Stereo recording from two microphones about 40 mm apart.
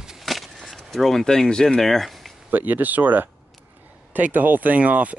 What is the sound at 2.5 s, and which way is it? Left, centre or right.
Speech, right.